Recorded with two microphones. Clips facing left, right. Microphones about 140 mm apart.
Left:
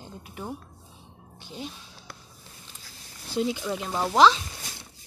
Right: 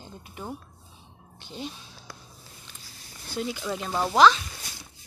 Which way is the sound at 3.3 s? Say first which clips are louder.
Left 5 dB; 20° left (ahead or behind).